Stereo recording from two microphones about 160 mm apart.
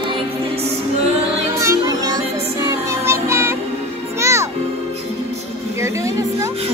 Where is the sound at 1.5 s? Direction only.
20° right (ahead or behind).